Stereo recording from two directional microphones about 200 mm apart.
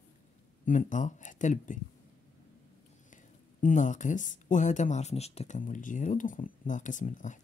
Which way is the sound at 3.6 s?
40° left (ahead or behind).